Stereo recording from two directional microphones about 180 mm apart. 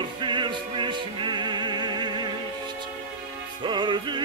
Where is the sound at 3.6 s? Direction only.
25° right (ahead or behind).